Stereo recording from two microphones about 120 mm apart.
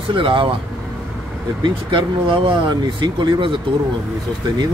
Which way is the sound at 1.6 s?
45° right (ahead or behind).